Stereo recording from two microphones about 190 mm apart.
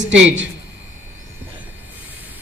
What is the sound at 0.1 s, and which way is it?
Speech, 70° right (ahead or behind).